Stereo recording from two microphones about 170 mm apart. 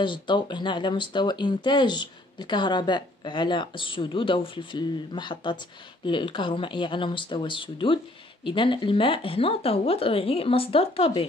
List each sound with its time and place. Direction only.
0.0 s speech: 30° left (ahead or behind)